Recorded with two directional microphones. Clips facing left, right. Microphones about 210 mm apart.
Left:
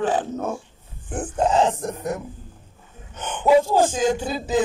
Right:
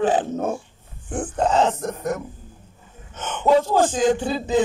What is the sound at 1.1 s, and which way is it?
A man's voice, 10° left (ahead or behind).